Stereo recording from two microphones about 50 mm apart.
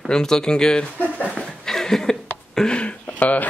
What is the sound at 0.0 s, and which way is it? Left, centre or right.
Speech, centre.